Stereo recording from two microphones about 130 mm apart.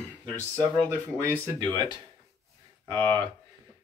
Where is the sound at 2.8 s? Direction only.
35° right (ahead or behind).